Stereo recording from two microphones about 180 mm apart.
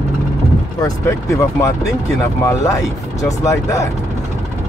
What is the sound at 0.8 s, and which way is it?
Speech, 15° left (ahead or behind).